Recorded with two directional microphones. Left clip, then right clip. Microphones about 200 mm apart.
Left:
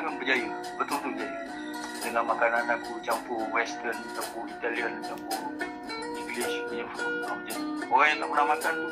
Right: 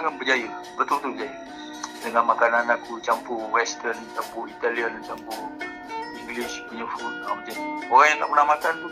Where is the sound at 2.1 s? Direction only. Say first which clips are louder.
Right 6 dB; 25° right (ahead or behind).